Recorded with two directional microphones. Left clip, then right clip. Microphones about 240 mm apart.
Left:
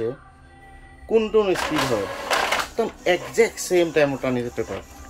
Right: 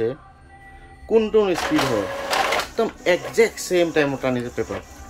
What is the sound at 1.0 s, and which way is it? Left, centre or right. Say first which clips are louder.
Speech: right 1 dB; centre.